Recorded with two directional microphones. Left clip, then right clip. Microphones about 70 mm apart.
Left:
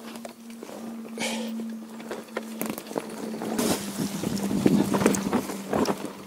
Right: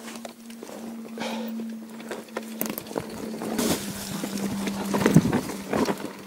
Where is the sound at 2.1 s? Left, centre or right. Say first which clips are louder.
Even; right.